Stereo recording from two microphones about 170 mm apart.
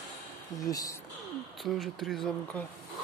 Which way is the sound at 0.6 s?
20° left (ahead or behind).